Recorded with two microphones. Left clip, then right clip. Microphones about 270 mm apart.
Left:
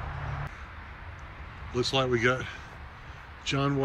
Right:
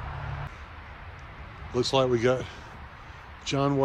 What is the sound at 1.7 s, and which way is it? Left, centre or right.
Speech, centre.